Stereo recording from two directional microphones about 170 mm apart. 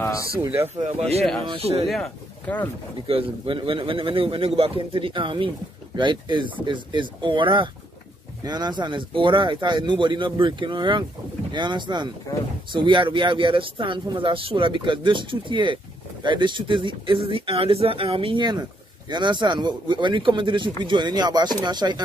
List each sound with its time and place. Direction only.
0.0 s a sound: 20° left (ahead or behind)
0.7 s speech: 40° right (ahead or behind)
1.9 s speech: 5° left (ahead or behind)
3.1 s speech: 30° right (ahead or behind)